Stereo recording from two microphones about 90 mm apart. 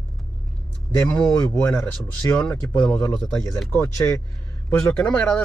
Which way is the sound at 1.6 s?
20° left (ahead or behind).